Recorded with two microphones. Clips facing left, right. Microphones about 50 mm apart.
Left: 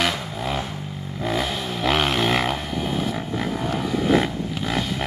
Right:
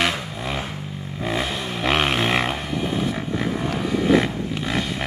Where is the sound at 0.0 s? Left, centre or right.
Right.